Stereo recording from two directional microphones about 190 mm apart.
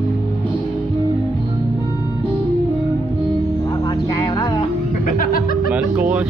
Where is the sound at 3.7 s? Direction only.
20° left (ahead or behind).